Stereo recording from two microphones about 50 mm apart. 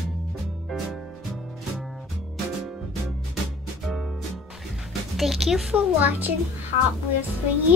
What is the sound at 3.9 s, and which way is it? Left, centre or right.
Music, centre.